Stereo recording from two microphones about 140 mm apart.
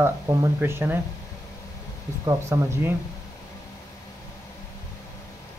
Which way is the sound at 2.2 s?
20° right (ahead or behind).